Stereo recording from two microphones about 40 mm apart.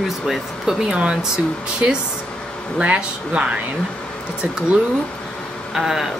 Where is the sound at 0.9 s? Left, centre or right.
Centre.